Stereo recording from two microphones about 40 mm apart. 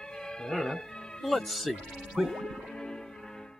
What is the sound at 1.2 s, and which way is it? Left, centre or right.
Speech, centre.